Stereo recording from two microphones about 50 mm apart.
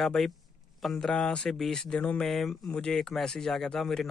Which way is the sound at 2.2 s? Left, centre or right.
Centre.